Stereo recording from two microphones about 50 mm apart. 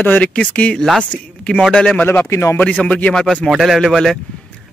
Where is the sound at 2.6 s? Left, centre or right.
Left.